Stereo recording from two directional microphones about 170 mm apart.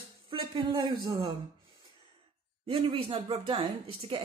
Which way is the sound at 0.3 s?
30° right (ahead or behind).